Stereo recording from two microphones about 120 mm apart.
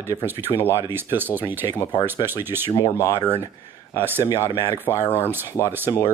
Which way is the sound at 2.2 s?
20° right (ahead or behind).